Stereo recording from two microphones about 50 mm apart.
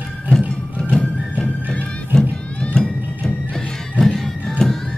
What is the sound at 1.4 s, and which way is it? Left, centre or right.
Music, left.